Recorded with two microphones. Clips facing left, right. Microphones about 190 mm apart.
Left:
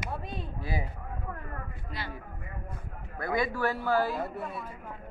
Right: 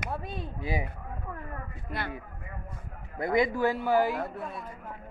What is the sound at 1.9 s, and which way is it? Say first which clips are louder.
Speech: right 5 dB; 55° right (ahead or behind).